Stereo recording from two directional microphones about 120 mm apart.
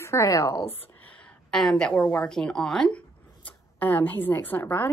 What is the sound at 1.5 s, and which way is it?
A woman's voice, 5° left (ahead or behind).